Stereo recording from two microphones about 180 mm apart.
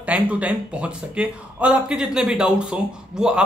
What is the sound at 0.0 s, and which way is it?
Speech, 5° right (ahead or behind).